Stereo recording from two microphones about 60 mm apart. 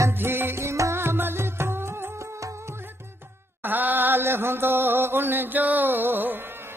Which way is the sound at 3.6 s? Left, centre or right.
Right.